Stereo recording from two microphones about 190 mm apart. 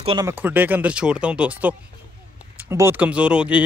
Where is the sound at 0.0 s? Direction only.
25° right (ahead or behind).